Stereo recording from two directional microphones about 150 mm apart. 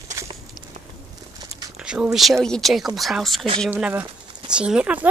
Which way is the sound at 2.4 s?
Centre (ahead or behind).